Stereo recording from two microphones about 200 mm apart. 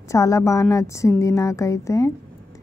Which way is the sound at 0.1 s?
15° left (ahead or behind).